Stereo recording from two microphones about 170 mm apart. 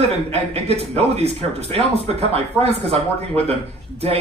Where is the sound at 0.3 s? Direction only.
35° right (ahead or behind).